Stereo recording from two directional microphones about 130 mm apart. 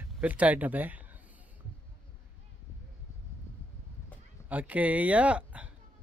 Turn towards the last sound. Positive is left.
turn(degrees=-10)  # may be behind; listen again after turning